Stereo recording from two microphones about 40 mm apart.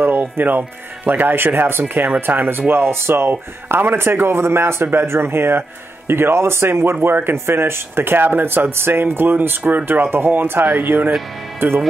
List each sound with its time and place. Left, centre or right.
0.0 s speech: right
2.7 s speech: right
7.2 s speech: right
9.6 s speech: right
9.8 s speech: right
11.6 s speech: right